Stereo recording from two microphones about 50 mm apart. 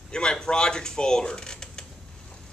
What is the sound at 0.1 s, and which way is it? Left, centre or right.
Speech, centre.